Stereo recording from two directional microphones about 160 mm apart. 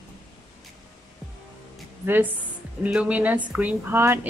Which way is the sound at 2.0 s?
15° right (ahead or behind).